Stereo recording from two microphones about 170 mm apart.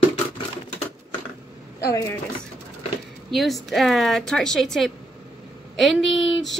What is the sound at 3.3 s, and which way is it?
A woman's voice, centre (ahead or behind).